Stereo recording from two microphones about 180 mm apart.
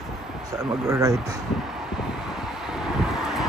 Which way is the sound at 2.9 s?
Centre (ahead or behind).